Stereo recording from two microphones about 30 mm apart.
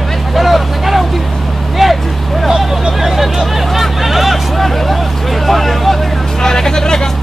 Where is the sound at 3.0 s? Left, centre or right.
Centre.